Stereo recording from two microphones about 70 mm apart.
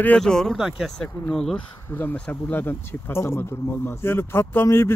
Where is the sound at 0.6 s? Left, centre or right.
Centre.